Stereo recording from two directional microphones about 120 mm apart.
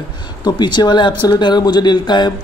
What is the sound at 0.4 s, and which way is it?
A man's voice, 35° left (ahead or behind).